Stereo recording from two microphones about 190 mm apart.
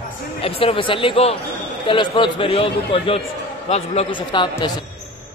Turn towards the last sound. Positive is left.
turn(degrees=25)  # may be behind; listen again after turning